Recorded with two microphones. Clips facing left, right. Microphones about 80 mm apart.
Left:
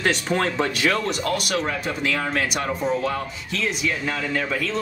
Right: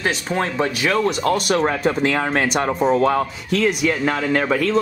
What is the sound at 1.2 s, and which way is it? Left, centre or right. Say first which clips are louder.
Speech: right 6 dB; right.